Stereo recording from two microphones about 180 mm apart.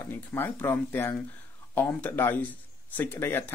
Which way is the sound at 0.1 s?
10° left (ahead or behind).